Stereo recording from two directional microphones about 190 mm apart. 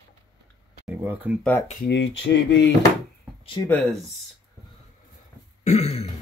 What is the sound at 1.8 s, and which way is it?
Speech, 70° left (ahead or behind).